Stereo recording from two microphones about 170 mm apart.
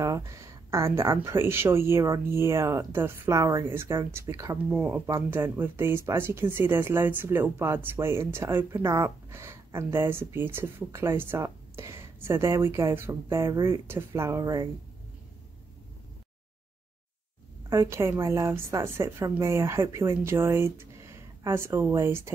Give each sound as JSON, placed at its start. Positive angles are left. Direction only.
{"t": 0.0, "sound": "speech", "side_deg": -20}
{"t": 17.6, "sound": "speech", "side_deg": -15}